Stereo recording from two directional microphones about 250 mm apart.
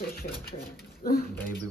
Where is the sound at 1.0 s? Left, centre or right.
Left.